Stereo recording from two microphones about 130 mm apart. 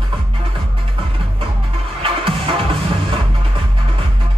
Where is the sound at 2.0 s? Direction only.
45° right (ahead or behind).